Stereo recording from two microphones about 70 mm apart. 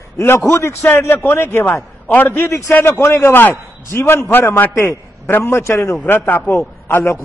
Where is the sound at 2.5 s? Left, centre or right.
Left.